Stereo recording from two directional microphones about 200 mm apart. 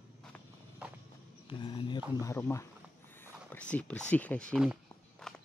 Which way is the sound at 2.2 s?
15° left (ahead or behind).